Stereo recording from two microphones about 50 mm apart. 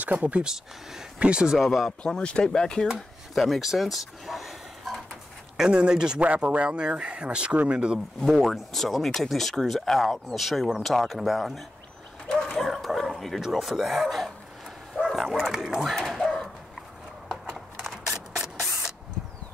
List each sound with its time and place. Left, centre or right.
0.0 s speech: right
0.4 s speech: centre
1.6 s speech: centre
1.9 s speech: centre
2.9 s speech: centre
5.6 s speech: centre
8.2 s speech: centre
12.5 s bow-wow: centre
13.4 s speech: centre
14.0 s speech: centre
15.0 s a sound: centre
15.5 s speech: centre
15.9 s dog: centre
17.3 s a sound: centre